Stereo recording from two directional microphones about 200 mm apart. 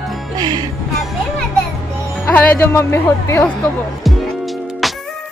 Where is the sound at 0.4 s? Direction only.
20° right (ahead or behind).